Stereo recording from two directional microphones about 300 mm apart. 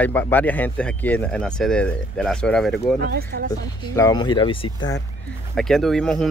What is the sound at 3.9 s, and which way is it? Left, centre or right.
Speech, centre.